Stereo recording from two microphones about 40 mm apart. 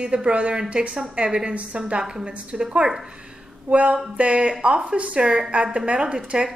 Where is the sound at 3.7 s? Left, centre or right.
Right; by 6.5 s centre.